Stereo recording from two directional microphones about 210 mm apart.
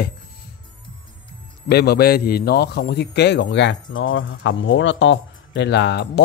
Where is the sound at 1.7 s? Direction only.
50° left (ahead or behind).